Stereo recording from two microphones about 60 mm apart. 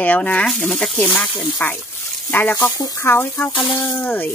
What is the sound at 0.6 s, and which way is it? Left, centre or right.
Speech, centre.